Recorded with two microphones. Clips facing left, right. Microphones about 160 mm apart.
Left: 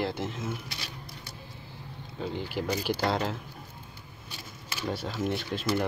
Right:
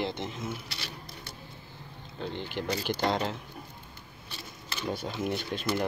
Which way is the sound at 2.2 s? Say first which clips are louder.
Left 2 dB; 5° left (ahead or behind).